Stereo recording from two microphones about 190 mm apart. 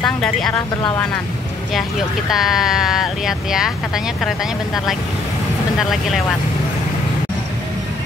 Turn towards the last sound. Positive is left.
turn(degrees=0)  # may be behind; listen again after turning